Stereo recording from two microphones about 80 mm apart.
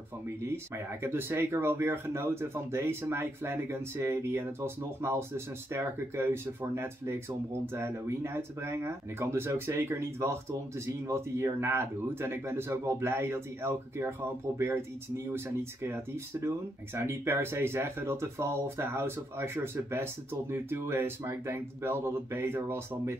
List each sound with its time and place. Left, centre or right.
1.0 s speech: right